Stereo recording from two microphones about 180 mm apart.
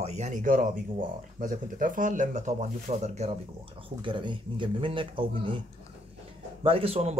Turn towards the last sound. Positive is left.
turn(degrees=-35)  # may be behind; listen again after turning